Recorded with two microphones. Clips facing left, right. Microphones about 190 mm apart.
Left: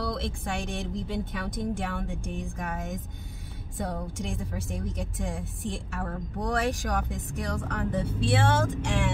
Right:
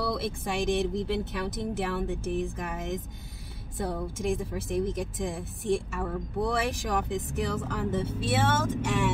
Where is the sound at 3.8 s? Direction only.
Centre (ahead or behind).